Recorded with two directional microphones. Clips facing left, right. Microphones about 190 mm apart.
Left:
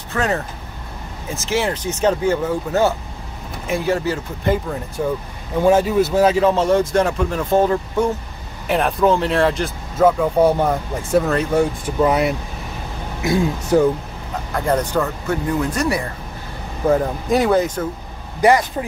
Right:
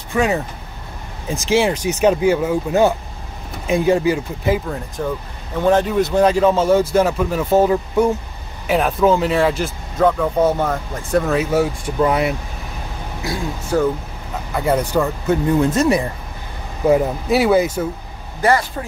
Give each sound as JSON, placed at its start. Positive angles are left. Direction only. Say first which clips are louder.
{"t": 0.1, "sound": "speech", "louder": "right 3 dB", "side_deg": -10}
{"t": 5.0, "sound": "speech", "louder": "left 3 dB", "side_deg": 5}
{"t": 13.2, "sound": "speech", "louder": "left 7 dB", "side_deg": 20}
{"t": 14.5, "sound": "speech", "louder": "right 1 dB", "side_deg": -5}
{"t": 15.6, "sound": "speech", "louder": "right 5 dB", "side_deg": -25}
{"t": 16.8, "sound": "speech", "louder": "right 2 dB", "side_deg": -10}
{"t": 18.4, "sound": "speech", "louder": "left 2 dB", "side_deg": 15}